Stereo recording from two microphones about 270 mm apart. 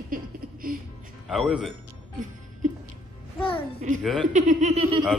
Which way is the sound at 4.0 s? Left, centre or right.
Centre.